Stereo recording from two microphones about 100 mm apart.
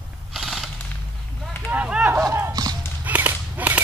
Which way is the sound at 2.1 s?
30° right (ahead or behind).